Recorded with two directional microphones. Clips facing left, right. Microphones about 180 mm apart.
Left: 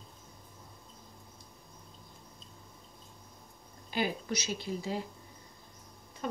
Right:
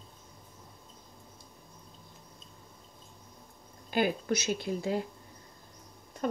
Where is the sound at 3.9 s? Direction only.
50° right (ahead or behind).